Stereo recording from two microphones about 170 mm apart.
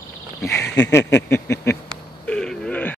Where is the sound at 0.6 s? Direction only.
90° left.